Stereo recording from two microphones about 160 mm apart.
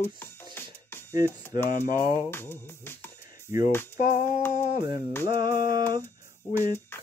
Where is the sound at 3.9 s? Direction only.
50° left (ahead or behind).